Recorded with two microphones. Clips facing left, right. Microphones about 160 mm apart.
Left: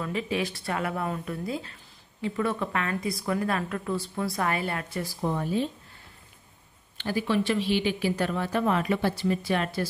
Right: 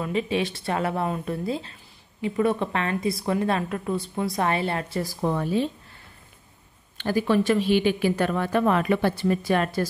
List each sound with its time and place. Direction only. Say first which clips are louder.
0.0 s a woman's voice: right 4 dB; 20° right (ahead or behind)
5.2 s speech: right 3 dB; 90° right
7.0 s speech: right 4 dB; 50° right (ahead or behind)